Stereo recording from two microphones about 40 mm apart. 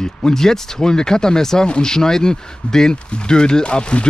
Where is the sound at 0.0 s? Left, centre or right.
Centre.